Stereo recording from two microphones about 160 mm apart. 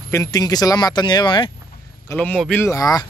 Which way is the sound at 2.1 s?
10° left (ahead or behind).